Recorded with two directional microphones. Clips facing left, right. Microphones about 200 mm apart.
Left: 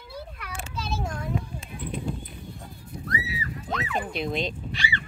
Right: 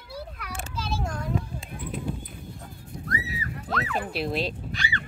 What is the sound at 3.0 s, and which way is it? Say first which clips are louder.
Music: left 1 dB; 45° right (ahead or behind).